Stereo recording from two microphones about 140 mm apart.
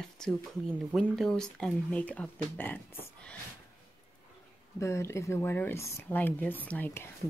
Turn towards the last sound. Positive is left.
turn(degrees=10)  # may be behind; listen again after turning